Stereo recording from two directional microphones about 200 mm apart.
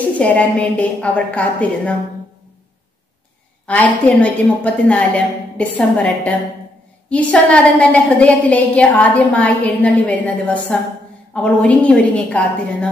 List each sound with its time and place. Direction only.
0.2 s a woman's voice: 5° left (ahead or behind)
3.6 s a woman's voice: 5° left (ahead or behind)